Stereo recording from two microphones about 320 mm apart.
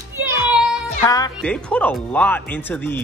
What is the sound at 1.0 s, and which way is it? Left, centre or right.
Speech, centre.